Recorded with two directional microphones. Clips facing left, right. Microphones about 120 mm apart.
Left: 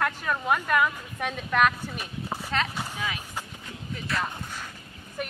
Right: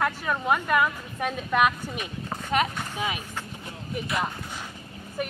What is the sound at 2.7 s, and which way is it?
Vehicle, 10° left (ahead or behind).